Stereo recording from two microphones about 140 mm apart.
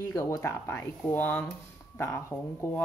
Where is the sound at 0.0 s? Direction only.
25° left (ahead or behind).